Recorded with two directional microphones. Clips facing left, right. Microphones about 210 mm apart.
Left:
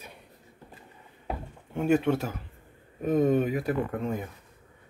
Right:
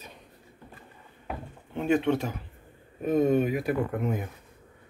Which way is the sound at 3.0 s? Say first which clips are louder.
Even; 10° right (ahead or behind).